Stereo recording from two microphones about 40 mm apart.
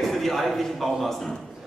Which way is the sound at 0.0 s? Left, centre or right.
Centre.